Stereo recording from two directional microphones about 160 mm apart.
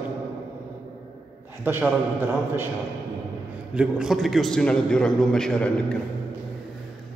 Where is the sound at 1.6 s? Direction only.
10° right (ahead or behind).